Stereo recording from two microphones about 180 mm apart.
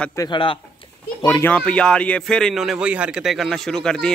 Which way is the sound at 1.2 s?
15° left (ahead or behind).